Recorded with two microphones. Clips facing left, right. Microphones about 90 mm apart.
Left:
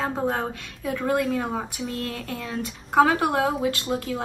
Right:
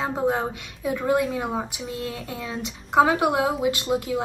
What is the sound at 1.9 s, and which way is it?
Speech, centre (ahead or behind).